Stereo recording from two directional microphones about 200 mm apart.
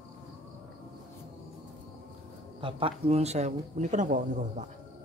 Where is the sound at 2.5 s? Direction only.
25° right (ahead or behind).